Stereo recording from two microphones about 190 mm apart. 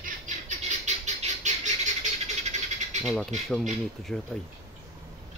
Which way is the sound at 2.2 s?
40° right (ahead or behind).